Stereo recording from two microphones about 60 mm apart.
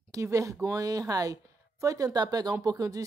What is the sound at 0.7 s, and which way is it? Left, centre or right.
A woman's voice, right.